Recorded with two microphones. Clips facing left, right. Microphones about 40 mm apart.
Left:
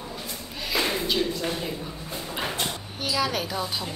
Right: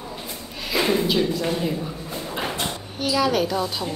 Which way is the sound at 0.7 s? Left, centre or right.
Centre.